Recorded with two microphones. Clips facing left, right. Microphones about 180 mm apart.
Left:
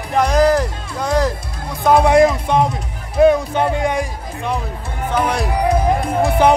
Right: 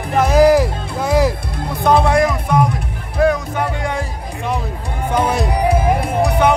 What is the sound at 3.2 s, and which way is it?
Music, 25° left (ahead or behind).